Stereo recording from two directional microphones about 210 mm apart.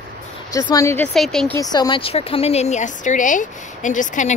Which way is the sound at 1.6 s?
20° left (ahead or behind).